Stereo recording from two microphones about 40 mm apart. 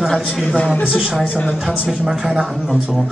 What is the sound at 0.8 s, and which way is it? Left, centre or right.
Speech, centre.